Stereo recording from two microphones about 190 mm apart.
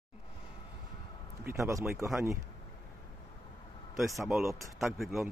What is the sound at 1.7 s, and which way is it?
Speech, 15° right (ahead or behind).